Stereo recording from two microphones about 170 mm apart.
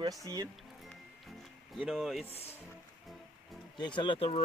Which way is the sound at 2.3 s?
35° left (ahead or behind).